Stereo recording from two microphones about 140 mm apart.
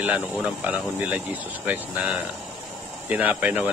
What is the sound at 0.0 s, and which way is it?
Speech, 10° right (ahead or behind).